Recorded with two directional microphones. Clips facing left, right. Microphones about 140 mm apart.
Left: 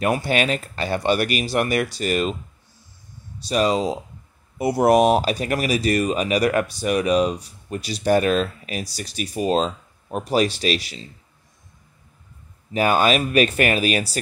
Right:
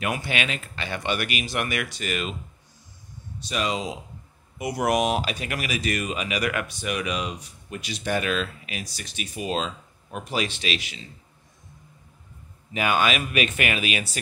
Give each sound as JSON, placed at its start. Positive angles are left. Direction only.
{"t": 0.0, "sound": "speech", "side_deg": 40}
{"t": 3.4, "sound": "speech", "side_deg": 35}
{"t": 12.7, "sound": "speech", "side_deg": 35}